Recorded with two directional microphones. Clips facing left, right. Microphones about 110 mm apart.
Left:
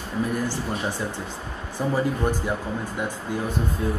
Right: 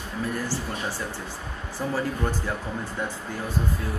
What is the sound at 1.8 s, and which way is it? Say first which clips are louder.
Speech: left 4 dB; 15° left (ahead or behind).